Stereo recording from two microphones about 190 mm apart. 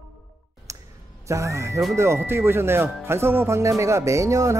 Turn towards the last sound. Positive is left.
turn(degrees=-15)  # may be behind; listen again after turning